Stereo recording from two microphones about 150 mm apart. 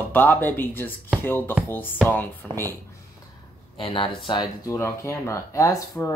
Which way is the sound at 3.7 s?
35° left (ahead or behind).